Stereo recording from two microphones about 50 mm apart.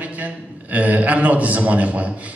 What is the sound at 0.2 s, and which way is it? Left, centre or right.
A man's voice, right.